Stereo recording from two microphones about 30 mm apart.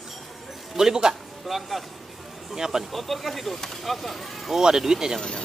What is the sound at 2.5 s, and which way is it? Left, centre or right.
Speech, centre.